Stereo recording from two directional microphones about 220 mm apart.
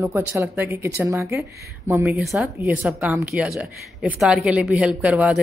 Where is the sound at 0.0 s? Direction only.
10° right (ahead or behind).